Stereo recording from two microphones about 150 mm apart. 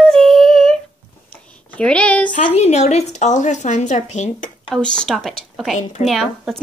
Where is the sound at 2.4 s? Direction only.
45° left (ahead or behind).